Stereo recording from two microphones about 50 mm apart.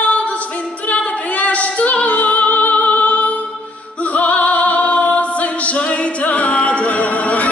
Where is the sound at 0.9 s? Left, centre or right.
Left.